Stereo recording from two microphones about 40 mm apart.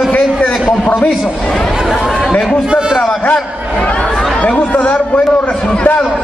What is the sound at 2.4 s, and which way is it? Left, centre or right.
Speech, centre.